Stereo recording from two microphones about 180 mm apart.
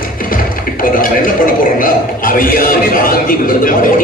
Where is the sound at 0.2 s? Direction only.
50° left (ahead or behind).